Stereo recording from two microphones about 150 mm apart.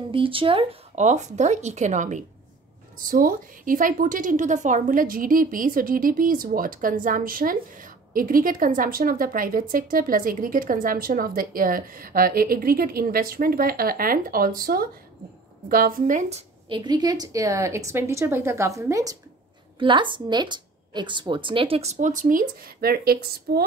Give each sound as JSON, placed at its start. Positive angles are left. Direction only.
{"t": 0.1, "sound": "speech", "side_deg": -35}
{"t": 3.0, "sound": "a woman's voice", "side_deg": -70}
{"t": 15.7, "sound": "speech", "side_deg": -65}
{"t": 16.6, "sound": "speech", "side_deg": -30}
{"t": 19.8, "sound": "a woman's voice", "side_deg": -35}